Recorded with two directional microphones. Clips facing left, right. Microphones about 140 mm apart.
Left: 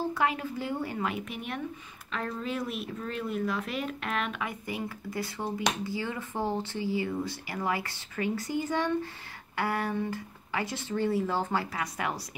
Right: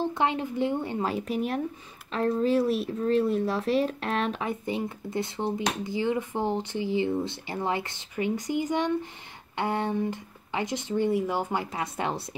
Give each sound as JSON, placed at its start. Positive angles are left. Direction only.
{"t": 0.0, "sound": "speech", "side_deg": -25}